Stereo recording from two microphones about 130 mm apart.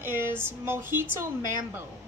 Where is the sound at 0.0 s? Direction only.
15° right (ahead or behind).